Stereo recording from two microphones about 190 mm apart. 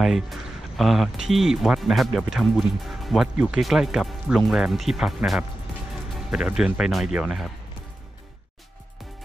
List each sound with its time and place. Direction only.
0.0 s speech: centre (ahead or behind)